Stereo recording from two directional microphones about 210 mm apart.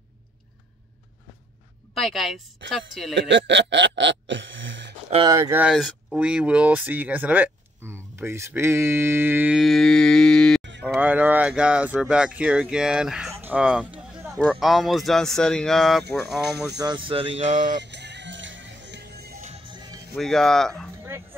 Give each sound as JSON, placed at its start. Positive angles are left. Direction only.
{"t": 2.0, "sound": "speech", "side_deg": 0}
{"t": 3.2, "sound": "speech", "side_deg": -60}
{"t": 5.1, "sound": "speech", "side_deg": -20}
{"t": 13.3, "sound": "a sound", "side_deg": -10}
{"t": 14.6, "sound": "speech", "side_deg": 0}
{"t": 16.6, "sound": "speech", "side_deg": -20}
{"t": 17.7, "sound": "music", "side_deg": -55}
{"t": 19.4, "sound": "music", "side_deg": -25}
{"t": 20.2, "sound": "speech", "side_deg": 0}
{"t": 21.0, "sound": "dog", "side_deg": -10}